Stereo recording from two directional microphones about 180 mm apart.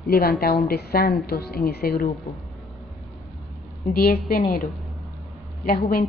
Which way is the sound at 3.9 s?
60° left (ahead or behind).